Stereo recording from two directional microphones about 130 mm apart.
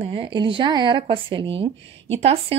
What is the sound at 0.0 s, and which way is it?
Speech, 45° right (ahead or behind).